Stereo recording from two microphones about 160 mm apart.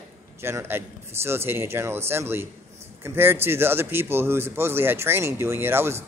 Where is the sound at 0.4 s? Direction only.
15° right (ahead or behind).